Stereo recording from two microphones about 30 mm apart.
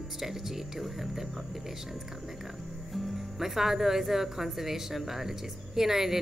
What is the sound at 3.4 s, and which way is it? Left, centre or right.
Speech, centre.